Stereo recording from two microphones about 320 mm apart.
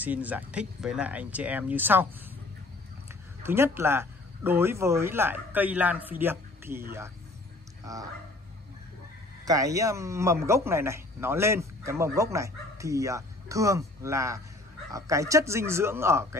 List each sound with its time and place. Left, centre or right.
0.0 s speech: centre
3.4 s a man's voice: centre
9.4 s a man's voice: centre